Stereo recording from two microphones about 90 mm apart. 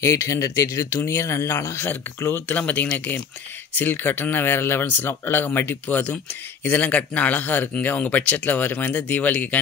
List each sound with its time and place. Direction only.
0.0 s speech: 35° left (ahead or behind); by 9.6 s 20° left (ahead or behind)